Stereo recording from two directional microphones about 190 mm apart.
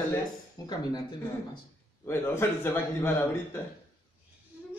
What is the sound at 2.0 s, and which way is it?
Speech, 10° left (ahead or behind).